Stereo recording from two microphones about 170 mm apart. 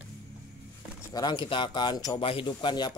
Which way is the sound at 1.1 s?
25° left (ahead or behind).